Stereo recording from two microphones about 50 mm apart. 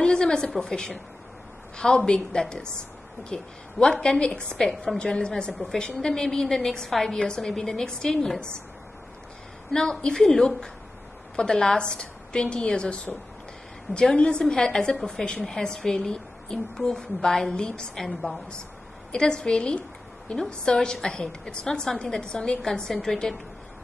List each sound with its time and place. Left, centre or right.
0.0 s a sound: centre
0.6 s a woman's voice: centre
9.7 s a woman's voice: centre
14.1 s a woman's voice: centre